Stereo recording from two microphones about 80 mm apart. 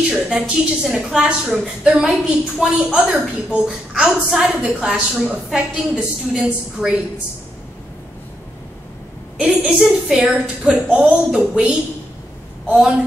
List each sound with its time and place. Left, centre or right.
0.1 s a woman's voice: centre
9.6 s a woman's voice: centre
9.8 s a woman's voice: centre
10.2 s a woman's voice: centre